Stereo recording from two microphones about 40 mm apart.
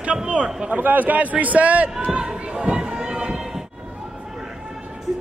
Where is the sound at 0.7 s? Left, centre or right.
Right.